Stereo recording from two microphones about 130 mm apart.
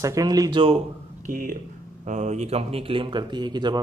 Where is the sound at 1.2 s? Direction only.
90° right.